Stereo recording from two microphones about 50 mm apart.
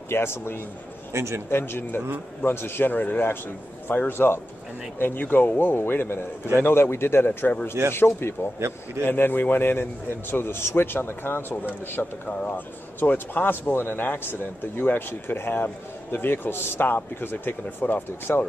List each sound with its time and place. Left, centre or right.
0.1 s a man's voice: left
1.1 s speech: right
1.5 s a man's voice: left
12.0 s speech: left
12.4 s a man's voice: left